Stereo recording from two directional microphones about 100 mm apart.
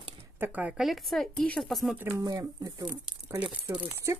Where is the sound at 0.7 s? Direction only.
Centre (ahead or behind).